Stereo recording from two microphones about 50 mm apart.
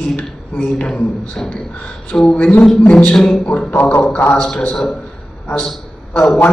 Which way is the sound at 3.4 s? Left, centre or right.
Left.